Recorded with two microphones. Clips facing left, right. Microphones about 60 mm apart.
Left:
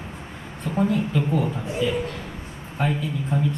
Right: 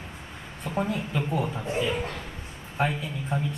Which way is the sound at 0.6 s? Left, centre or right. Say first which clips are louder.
Left 6 dB; centre.